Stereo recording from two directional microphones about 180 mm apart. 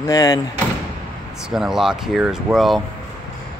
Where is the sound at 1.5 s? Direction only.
Centre (ahead or behind).